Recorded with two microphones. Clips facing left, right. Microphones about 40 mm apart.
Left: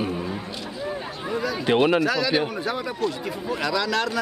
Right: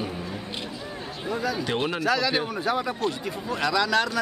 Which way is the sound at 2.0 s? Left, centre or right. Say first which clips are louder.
Left 2 dB; centre.